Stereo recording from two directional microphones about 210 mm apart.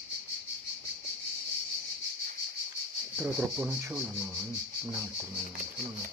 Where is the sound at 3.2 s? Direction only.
5° right (ahead or behind).